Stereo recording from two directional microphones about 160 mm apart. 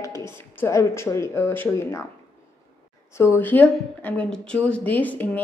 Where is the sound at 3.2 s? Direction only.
15° left (ahead or behind).